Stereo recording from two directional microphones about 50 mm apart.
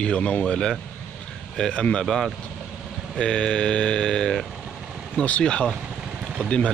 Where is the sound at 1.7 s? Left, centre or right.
Left.